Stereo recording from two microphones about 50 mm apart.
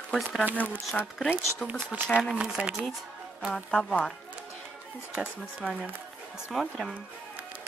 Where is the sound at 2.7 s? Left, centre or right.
Centre.